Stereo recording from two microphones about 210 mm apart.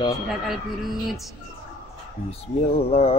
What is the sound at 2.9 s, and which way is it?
Mantra, 30° left (ahead or behind).